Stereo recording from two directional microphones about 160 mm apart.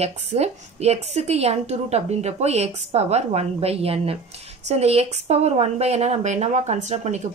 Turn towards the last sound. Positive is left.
turn(degrees=-45)  # may be behind; listen again after turning